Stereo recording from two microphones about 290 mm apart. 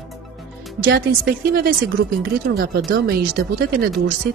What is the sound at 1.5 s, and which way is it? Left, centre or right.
Speech, right.